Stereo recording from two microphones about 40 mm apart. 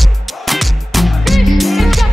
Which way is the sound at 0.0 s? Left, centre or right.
Centre.